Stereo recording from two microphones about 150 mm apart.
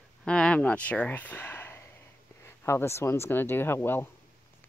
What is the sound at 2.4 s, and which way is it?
Speech, 15° left (ahead or behind).